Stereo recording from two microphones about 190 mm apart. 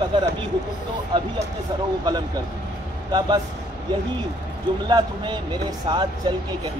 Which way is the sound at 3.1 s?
20° right (ahead or behind).